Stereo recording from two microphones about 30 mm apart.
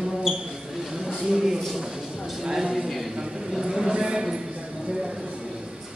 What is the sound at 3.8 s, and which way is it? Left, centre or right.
Speech, right.